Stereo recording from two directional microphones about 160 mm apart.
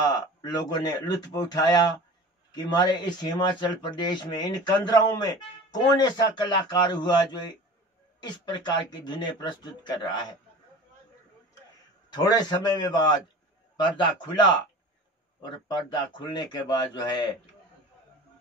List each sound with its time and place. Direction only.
0.0 s speech: 25° left (ahead or behind)
12.1 s speech: 25° left (ahead or behind)
14.2 s speech: 25° left (ahead or behind)